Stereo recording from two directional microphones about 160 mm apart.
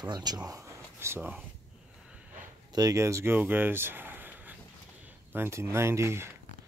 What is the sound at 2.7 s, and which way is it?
Speech, 20° right (ahead or behind).